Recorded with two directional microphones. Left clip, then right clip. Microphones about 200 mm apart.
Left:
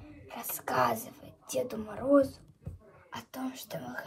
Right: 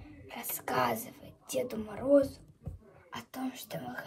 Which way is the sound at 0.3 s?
30° left (ahead or behind).